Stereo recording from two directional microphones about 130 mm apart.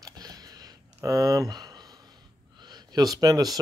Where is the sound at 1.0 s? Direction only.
25° right (ahead or behind).